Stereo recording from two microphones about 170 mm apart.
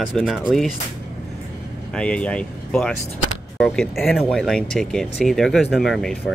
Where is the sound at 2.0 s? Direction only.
5° left (ahead or behind).